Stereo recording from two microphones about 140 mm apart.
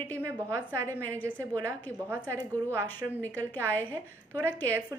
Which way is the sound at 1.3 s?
20° right (ahead or behind).